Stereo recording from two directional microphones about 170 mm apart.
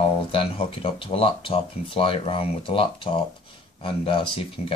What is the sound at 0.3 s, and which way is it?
Speech, 30° left (ahead or behind).